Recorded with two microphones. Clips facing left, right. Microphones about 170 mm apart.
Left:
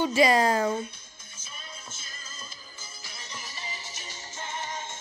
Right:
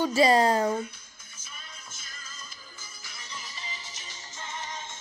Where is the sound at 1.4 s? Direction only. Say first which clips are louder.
Left 3 dB; 25° left (ahead or behind).